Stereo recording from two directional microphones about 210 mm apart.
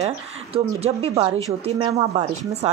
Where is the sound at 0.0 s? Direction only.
30° right (ahead or behind).